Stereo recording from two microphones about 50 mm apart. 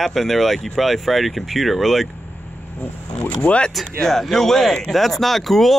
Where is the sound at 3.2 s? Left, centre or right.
Left.